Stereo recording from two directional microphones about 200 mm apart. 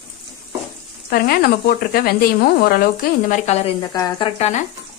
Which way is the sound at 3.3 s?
35° left (ahead or behind).